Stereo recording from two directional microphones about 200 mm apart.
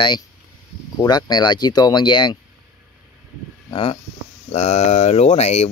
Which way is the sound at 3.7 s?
25° left (ahead or behind).